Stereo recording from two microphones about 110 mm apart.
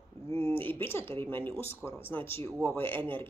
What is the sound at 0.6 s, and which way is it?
Speech, 20° left (ahead or behind).